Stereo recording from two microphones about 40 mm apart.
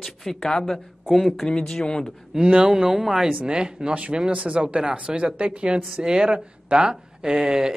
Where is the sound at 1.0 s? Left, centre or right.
Centre.